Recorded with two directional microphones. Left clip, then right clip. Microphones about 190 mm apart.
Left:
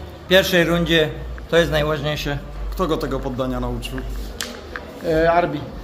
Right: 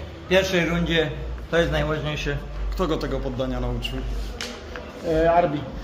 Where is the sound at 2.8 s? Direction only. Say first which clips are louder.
Left 3 dB; 20° left (ahead or behind).